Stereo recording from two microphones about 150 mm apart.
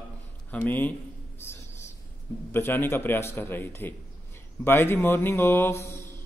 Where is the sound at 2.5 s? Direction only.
15° left (ahead or behind).